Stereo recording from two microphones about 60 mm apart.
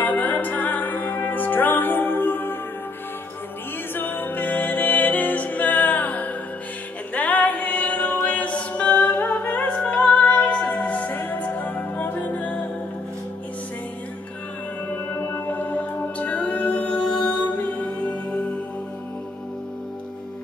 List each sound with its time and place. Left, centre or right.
0.0 s music: left
3.9 s music: left
15.1 s music: left